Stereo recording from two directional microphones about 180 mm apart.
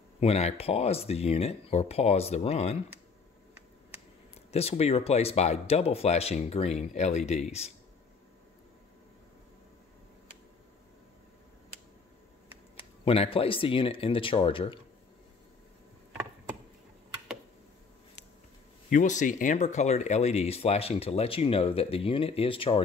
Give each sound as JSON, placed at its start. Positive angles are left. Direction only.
{"t": 0.2, "sound": "speech", "side_deg": 35}
{"t": 4.5, "sound": "speech", "side_deg": 35}
{"t": 13.0, "sound": "speech", "side_deg": 30}
{"t": 18.9, "sound": "speech", "side_deg": 45}